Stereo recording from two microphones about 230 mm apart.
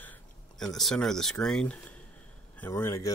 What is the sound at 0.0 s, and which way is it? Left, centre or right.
Speech, centre.